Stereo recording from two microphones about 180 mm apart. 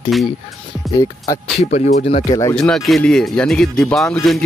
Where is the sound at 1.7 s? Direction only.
40° left (ahead or behind).